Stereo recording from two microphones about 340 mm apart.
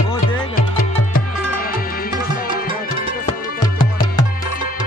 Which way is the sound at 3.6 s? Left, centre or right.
Centre.